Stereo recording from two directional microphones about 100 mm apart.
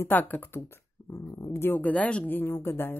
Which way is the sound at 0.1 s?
20° left (ahead or behind).